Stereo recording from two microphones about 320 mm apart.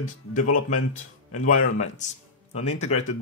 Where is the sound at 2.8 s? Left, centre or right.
Centre.